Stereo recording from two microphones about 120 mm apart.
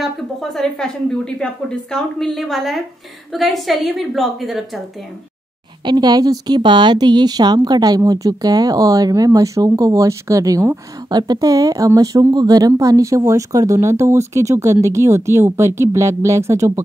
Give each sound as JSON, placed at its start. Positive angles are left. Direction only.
{"t": 0.0, "sound": "speech", "side_deg": 0}
{"t": 5.9, "sound": "a woman's voice", "side_deg": -35}